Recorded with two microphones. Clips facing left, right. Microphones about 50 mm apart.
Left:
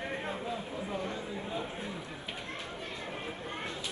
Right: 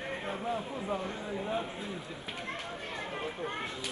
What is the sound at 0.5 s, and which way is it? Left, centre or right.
Speech, right.